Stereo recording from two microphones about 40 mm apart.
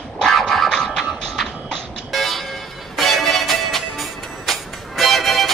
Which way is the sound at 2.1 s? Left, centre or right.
Centre.